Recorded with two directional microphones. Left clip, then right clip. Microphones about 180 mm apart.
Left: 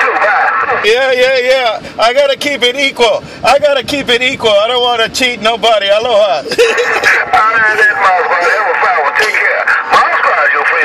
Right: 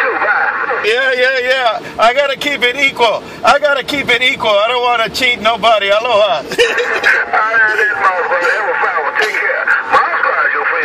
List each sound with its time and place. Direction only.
0.0 s radio: 45° left (ahead or behind)
0.8 s a man's voice: 30° left (ahead or behind)
2.6 s a man's voice: 35° left (ahead or behind); by 7.6 s 50° left (ahead or behind)
7.8 s a sound: 45° left (ahead or behind)
9.4 s radio: 45° left (ahead or behind)